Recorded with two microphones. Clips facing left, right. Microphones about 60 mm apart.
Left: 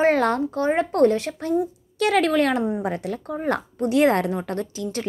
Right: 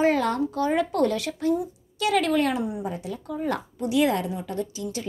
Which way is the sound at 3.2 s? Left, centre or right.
Left.